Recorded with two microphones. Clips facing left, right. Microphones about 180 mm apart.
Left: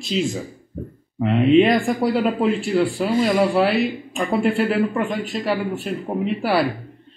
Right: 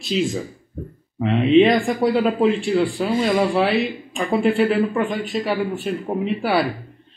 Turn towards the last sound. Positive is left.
turn(degrees=0)  # may be behind; listen again after turning